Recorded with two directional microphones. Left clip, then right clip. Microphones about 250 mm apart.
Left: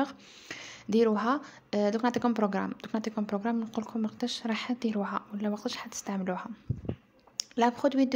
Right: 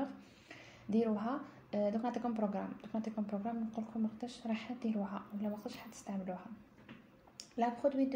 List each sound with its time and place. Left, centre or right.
0.0 s speech: left